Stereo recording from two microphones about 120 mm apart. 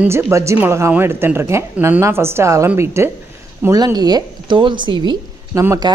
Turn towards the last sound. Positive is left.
turn(degrees=-25)  # may be behind; listen again after turning